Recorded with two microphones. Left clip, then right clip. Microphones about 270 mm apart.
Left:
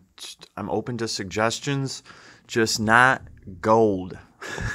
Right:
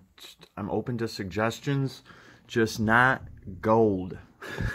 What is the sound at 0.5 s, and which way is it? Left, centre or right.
Speech, left.